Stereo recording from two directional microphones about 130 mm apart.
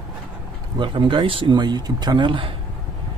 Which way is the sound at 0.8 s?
40° right (ahead or behind).